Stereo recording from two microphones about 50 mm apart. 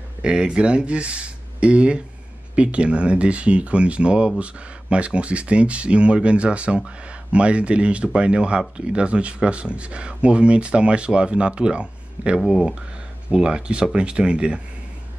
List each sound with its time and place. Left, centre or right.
0.2 s speech: centre
12.4 s speech: centre